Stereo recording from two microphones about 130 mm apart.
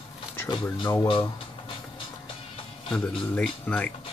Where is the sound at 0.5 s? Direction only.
40° left (ahead or behind).